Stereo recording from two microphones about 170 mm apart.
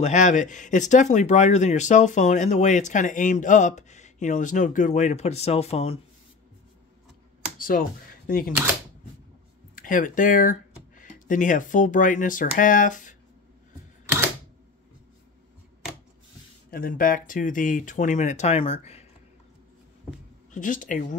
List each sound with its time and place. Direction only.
0.0 s speech: 45° left (ahead or behind)
7.5 s speech: 55° left (ahead or behind)
9.8 s speech: 50° left (ahead or behind)
16.7 s speech: 55° left (ahead or behind); by 19.0 s 35° left (ahead or behind)
20.5 s speech: 50° left (ahead or behind)